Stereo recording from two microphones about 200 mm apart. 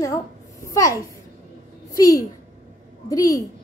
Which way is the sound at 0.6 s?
15° left (ahead or behind).